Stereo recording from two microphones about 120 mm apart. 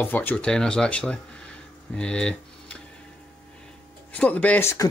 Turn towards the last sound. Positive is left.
turn(degrees=25)  # may be behind; listen again after turning